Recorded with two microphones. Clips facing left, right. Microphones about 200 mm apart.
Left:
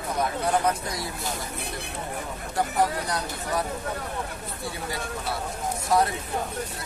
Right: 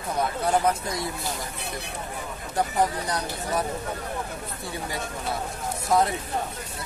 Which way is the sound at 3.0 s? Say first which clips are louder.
Right 1 dB; 20° right (ahead or behind).